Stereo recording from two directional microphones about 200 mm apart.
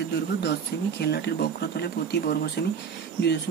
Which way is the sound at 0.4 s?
55° left (ahead or behind).